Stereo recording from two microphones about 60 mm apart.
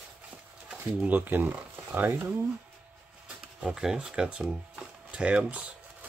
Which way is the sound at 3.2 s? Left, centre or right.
Centre.